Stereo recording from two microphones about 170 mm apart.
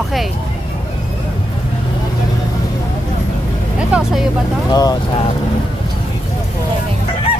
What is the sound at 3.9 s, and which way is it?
Speech, 5° right (ahead or behind).